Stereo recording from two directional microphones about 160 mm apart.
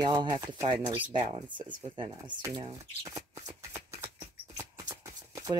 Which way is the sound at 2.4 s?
25° right (ahead or behind).